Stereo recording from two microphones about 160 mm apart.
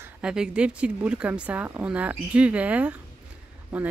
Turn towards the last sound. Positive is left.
turn(degrees=-5)  # may be behind; listen again after turning